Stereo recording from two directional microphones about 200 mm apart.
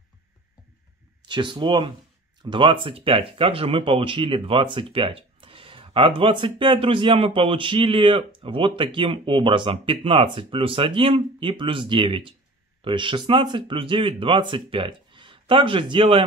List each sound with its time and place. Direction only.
1.2 s speech: 25° right (ahead or behind)